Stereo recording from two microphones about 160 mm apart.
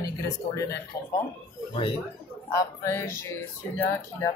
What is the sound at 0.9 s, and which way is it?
Speech, 15° left (ahead or behind).